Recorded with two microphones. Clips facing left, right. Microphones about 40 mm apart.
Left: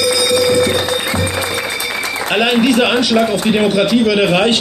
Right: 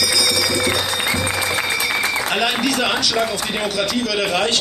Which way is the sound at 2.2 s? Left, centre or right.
Left.